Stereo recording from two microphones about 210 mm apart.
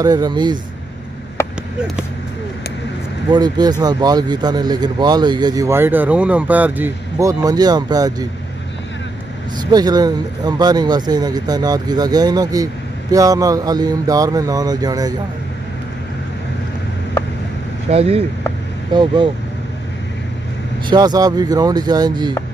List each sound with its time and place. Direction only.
0.0 s speech: 20° right (ahead or behind)
1.4 s a sound: 15° left (ahead or behind)
3.3 s speech: 20° right (ahead or behind)
9.6 s speech: 20° right (ahead or behind)
17.8 s speech: 30° right (ahead or behind)
20.8 s speech: 20° right (ahead or behind)